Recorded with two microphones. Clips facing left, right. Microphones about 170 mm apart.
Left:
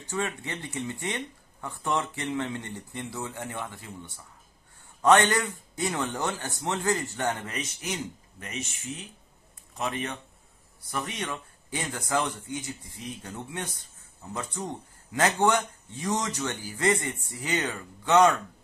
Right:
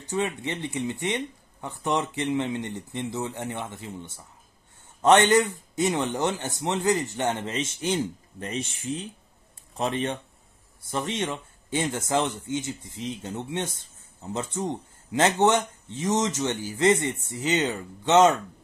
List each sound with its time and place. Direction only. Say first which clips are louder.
0.1 s speech: right 4 dB; 20° right (ahead or behind)